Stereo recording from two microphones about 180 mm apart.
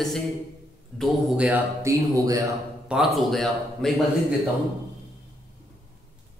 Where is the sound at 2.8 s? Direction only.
Centre (ahead or behind).